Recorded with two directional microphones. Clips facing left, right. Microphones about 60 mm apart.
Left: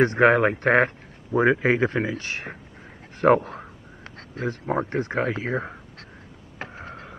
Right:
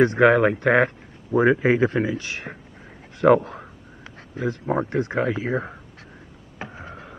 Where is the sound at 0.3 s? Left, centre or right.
Centre.